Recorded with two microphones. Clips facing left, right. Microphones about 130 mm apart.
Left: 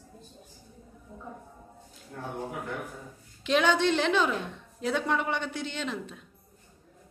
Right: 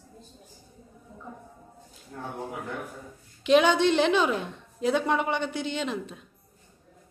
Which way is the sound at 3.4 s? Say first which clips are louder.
Right 4 dB; 15° right (ahead or behind).